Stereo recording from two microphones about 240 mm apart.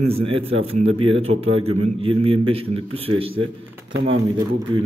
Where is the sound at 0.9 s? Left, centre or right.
Right.